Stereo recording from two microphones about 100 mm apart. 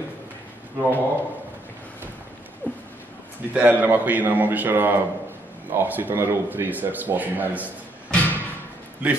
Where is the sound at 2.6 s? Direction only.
20° left (ahead or behind).